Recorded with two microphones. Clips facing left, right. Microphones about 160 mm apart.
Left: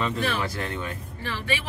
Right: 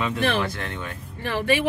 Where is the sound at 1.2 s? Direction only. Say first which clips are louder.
Right 8 dB; 55° right (ahead or behind).